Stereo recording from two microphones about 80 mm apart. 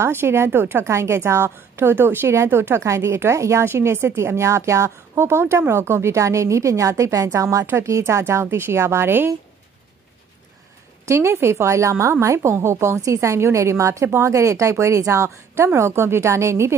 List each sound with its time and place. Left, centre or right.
0.0 s a woman's voice: right
11.1 s a woman's voice: right